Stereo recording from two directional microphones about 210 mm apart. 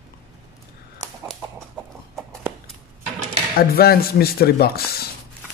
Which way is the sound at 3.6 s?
45° left (ahead or behind).